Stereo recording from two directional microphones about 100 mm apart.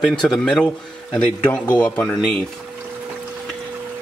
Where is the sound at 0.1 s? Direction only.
5° left (ahead or behind).